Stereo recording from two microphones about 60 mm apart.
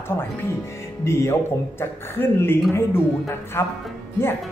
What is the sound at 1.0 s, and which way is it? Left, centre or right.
Speech, left.